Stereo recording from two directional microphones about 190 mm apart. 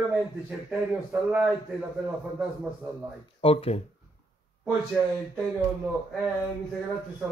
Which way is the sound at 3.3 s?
30° left (ahead or behind).